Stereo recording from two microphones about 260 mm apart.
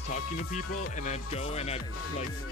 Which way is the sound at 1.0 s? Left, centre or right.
Left.